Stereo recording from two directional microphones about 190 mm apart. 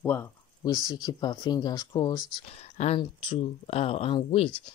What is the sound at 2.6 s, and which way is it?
Speech, 35° left (ahead or behind).